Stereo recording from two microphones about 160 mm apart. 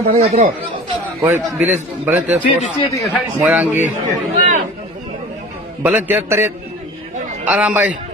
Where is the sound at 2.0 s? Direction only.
10° right (ahead or behind).